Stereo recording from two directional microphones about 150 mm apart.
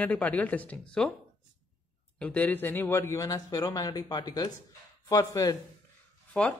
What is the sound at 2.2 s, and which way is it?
Speech, 10° left (ahead or behind).